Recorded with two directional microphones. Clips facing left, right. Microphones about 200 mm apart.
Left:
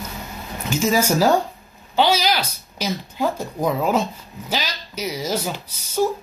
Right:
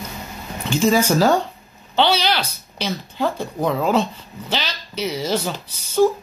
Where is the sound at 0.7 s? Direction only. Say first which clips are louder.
Right 2 dB; 5° left (ahead or behind).